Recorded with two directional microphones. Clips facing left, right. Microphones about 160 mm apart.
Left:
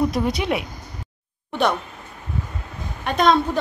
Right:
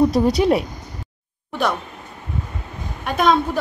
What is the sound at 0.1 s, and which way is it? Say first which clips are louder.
Speech: right 6 dB; 35° right (ahead or behind).